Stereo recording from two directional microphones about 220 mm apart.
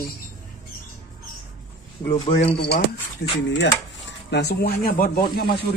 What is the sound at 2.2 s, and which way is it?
Speech, 25° left (ahead or behind).